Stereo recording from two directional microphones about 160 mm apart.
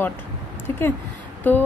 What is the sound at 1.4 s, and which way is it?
Speech, 10° left (ahead or behind).